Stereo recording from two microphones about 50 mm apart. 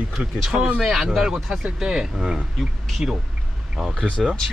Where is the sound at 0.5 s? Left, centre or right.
Right.